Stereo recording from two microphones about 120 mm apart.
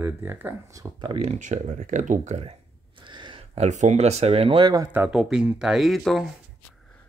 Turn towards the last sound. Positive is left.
turn(degrees=0)  # may be behind; listen again after turning